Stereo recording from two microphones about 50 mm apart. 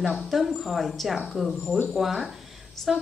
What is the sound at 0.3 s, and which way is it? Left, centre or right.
Speech, centre.